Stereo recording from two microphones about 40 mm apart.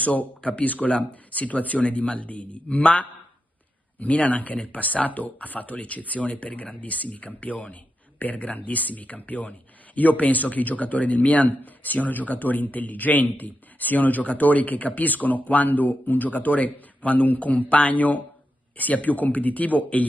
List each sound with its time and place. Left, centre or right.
0.0 s speech: left
11.5 s a man's voice: left